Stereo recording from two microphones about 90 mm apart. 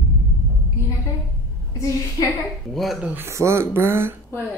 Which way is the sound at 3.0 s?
20° right (ahead or behind).